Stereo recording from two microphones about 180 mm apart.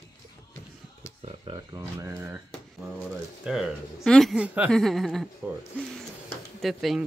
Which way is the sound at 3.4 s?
Centre (ahead or behind).